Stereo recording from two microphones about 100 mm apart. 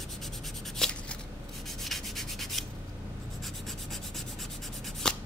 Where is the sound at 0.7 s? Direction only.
5° left (ahead or behind).